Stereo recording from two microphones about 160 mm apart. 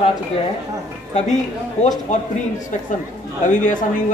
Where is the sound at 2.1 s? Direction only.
50° left (ahead or behind).